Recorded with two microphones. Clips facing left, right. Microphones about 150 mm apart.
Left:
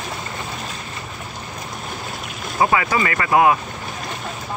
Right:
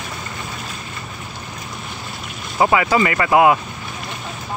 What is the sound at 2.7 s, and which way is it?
Speech, 25° right (ahead or behind).